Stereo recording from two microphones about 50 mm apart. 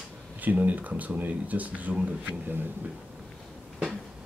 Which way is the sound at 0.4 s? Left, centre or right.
Right.